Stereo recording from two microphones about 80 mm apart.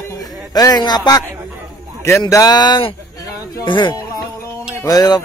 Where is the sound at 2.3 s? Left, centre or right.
Left.